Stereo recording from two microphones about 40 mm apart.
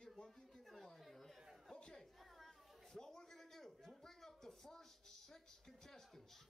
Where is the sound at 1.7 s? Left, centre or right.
Left.